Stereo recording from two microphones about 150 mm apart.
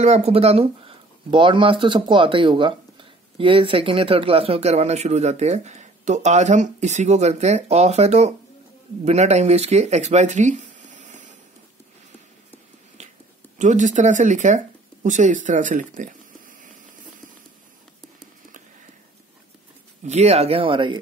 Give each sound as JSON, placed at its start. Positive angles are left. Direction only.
{"t": 0.0, "sound": "speech", "side_deg": -45}
{"t": 13.6, "sound": "speech", "side_deg": -55}
{"t": 20.1, "sound": "speech", "side_deg": -45}